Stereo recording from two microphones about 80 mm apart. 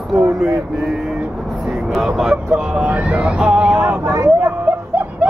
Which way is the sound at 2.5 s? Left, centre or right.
Centre.